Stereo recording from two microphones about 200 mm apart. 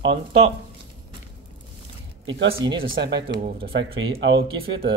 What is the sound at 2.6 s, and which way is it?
Speech, 20° right (ahead or behind).